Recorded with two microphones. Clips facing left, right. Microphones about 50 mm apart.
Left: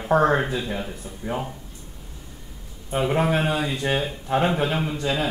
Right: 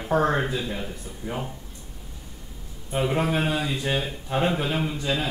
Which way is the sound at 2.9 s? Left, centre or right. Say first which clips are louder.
Left 2 dB; centre.